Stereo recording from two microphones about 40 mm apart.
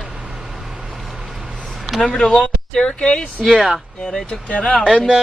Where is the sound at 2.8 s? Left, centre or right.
Left.